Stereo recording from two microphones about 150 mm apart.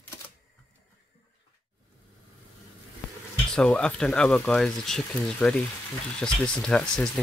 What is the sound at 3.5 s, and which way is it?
Speech, 5° left (ahead or behind).